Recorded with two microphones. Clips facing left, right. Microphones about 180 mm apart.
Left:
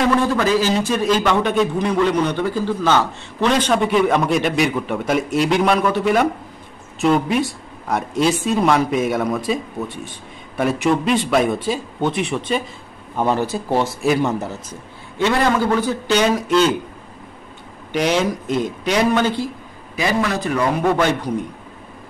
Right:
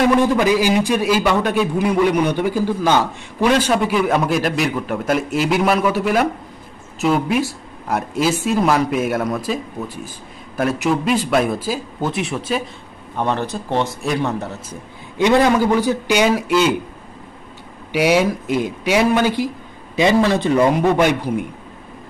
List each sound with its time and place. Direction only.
0.0 s a man's voice: 15° right (ahead or behind); by 14.5 s centre (ahead or behind)
14.7 s a man's voice: 15° right (ahead or behind)
17.9 s a man's voice: 10° right (ahead or behind)
20.0 s speech: 25° right (ahead or behind)
20.8 s a man's voice: 15° right (ahead or behind)